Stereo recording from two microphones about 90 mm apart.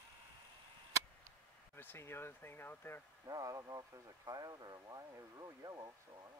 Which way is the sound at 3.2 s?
40° right (ahead or behind).